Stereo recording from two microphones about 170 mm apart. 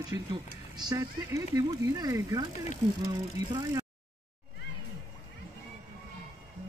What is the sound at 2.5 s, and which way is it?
Speech, 45° left (ahead or behind).